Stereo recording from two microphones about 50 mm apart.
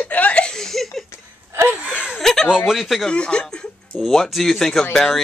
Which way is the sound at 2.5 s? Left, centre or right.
Centre.